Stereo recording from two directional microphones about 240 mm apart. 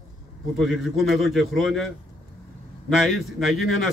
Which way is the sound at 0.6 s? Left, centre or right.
Centre.